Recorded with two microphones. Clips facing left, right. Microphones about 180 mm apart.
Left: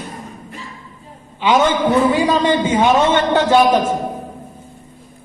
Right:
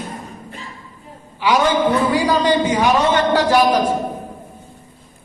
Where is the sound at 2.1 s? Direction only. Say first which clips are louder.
Left 1 dB; 20° left (ahead or behind).